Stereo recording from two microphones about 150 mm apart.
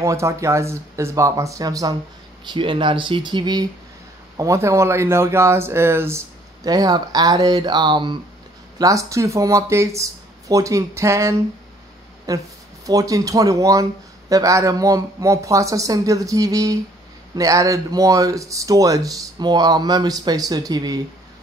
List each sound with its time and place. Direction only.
0.0 s speech: 20° right (ahead or behind)